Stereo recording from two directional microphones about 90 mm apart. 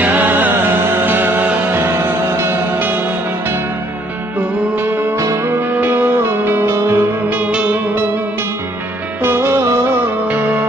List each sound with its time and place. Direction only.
0.0 s music: 20° right (ahead or behind)
4.7 s music: 20° right (ahead or behind)
5.2 s music: 35° right (ahead or behind)
7.2 s music: 20° right (ahead or behind)
9.2 s music: 25° right (ahead or behind)
10.2 s music: 20° right (ahead or behind)